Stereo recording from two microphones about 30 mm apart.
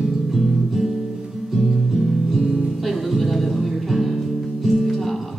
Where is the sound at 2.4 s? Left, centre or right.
Right.